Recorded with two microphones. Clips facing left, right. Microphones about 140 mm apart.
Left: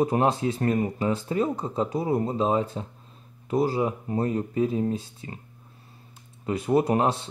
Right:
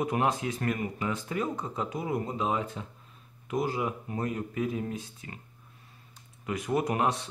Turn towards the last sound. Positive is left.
turn(degrees=30)  # may be behind; listen again after turning